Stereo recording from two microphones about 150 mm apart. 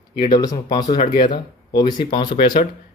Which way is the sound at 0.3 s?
25° left (ahead or behind).